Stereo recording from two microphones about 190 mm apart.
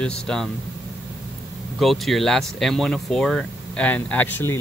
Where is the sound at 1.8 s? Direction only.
Centre (ahead or behind).